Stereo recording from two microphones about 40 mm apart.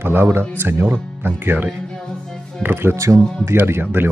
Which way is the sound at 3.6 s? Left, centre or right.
Right.